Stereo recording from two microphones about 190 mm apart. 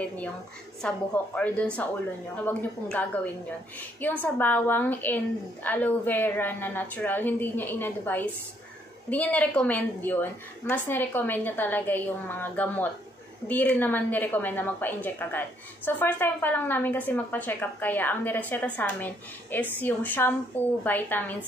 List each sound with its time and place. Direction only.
0.8 s a woman's voice: 5° left (ahead or behind)